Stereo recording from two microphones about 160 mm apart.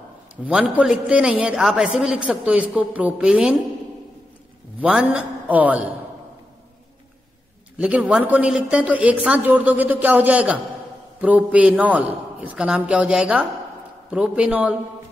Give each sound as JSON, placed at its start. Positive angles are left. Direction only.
{"t": 0.5, "sound": "a man's voice", "side_deg": -5}
{"t": 4.7, "sound": "a man's voice", "side_deg": -10}
{"t": 7.7, "sound": "a man's voice", "side_deg": -10}